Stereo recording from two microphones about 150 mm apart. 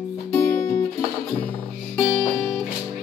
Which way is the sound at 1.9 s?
15° left (ahead or behind).